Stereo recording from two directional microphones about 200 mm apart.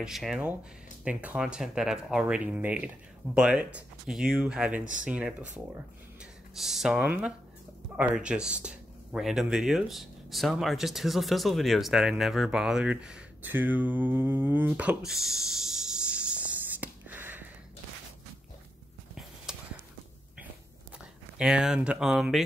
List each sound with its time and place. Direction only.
0.0 s speech: centre (ahead or behind)
6.5 s speech: centre (ahead or behind)
19.5 s a sound: 5° right (ahead or behind)
21.4 s speech: 5° right (ahead or behind)